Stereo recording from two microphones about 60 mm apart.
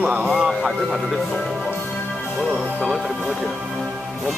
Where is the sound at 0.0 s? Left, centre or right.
Centre.